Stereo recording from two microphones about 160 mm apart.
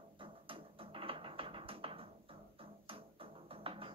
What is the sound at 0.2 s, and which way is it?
Music, 35° right (ahead or behind).